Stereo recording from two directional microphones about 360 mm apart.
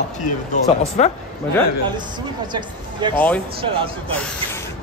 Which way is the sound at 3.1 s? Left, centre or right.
Centre.